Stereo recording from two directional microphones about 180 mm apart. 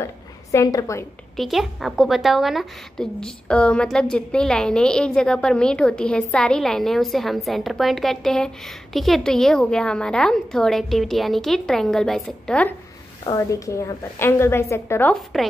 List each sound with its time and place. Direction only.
0.0 s a sound: 15° left (ahead or behind)
1.3 s a woman's voice: centre (ahead or behind)
13.2 s a woman's voice: 20° left (ahead or behind)